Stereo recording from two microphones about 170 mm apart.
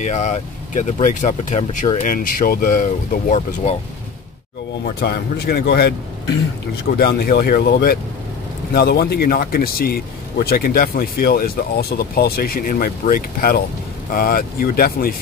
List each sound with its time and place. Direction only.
0.0 s speech: 45° left (ahead or behind)
4.8 s speech: 65° left (ahead or behind)